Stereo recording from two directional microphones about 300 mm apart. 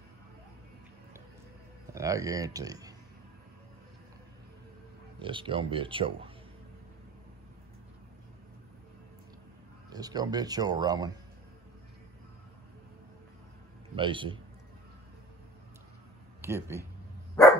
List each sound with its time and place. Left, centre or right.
2.0 s speech: centre
5.2 s speech: centre
9.8 s speech: centre
13.9 s speech: centre
16.3 s speech: centre